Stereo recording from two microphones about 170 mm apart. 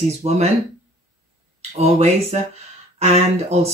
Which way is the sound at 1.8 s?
35° right (ahead or behind).